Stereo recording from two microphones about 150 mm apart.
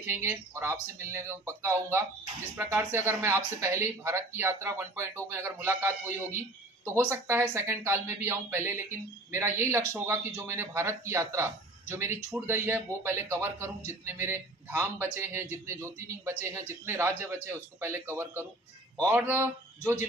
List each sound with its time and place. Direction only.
0.1 s a man's voice: 15° right (ahead or behind)